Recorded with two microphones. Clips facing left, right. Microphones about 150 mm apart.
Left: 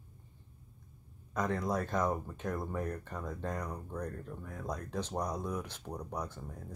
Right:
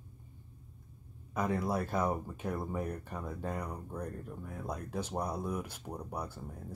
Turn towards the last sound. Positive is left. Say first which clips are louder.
# even
turn(degrees=-10)  # may be behind; listen again after turning